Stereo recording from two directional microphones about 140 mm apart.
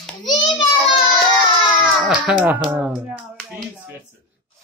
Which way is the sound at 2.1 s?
5° right (ahead or behind).